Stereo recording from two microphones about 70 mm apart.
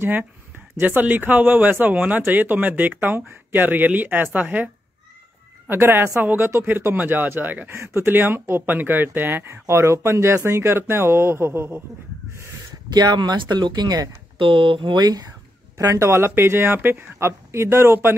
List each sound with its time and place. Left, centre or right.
0.0 s speech: right
5.7 s speech: right
12.9 s speech: right
15.8 s speech: right